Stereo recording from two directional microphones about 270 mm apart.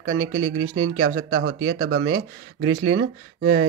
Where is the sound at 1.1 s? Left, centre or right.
Right.